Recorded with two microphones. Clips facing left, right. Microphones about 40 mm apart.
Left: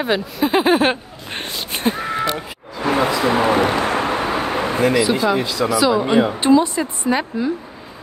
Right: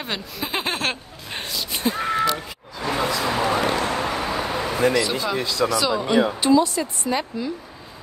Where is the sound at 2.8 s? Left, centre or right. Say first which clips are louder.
Left 6 dB; left.